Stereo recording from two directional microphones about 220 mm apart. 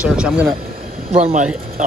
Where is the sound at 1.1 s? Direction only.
30° right (ahead or behind).